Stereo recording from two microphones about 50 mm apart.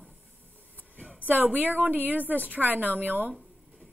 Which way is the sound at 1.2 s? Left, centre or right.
Right.